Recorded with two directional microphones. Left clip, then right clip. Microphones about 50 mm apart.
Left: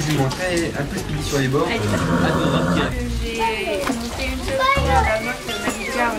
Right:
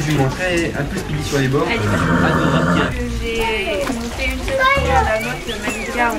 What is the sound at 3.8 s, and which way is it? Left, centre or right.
Children playing, centre.